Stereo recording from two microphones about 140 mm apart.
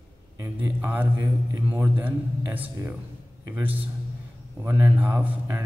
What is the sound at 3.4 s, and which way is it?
A man's voice, 15° right (ahead or behind).